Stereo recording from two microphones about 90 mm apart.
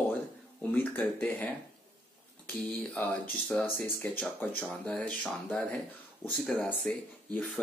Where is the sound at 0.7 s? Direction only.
20° left (ahead or behind).